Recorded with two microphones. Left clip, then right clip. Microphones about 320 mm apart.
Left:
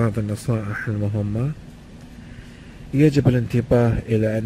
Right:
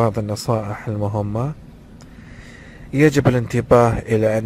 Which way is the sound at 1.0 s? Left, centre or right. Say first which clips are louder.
Right 5 dB; right.